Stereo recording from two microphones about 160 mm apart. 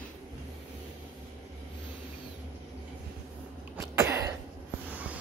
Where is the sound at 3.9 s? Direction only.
20° right (ahead or behind).